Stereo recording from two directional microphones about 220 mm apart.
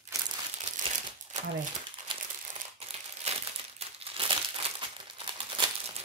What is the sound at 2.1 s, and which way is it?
Crumpling, 20° right (ahead or behind).